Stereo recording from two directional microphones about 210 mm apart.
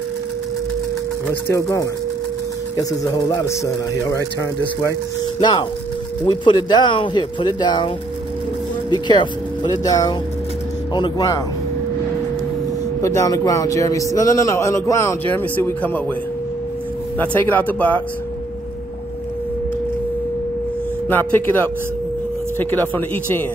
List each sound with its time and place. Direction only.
1.5 s a man's voice: 15° left (ahead or behind)
8.9 s speech: 20° left (ahead or behind)
13.0 s a man's voice: 15° left (ahead or behind)
17.2 s a man's voice: 10° left (ahead or behind)
21.1 s a man's voice: 10° left (ahead or behind)